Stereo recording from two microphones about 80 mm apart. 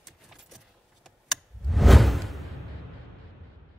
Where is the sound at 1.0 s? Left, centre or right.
Centre.